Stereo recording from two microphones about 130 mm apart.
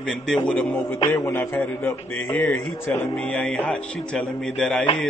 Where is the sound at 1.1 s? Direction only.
20° left (ahead or behind).